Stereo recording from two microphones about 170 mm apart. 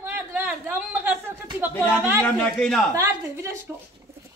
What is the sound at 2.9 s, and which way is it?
Speech, 20° right (ahead or behind).